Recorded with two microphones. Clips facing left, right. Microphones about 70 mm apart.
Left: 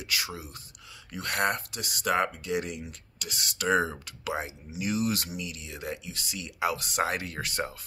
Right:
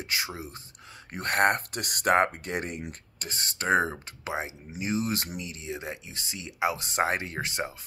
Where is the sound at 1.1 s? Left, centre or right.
Right.